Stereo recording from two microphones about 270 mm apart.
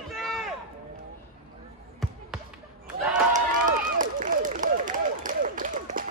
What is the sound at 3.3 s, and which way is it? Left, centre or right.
Run, right.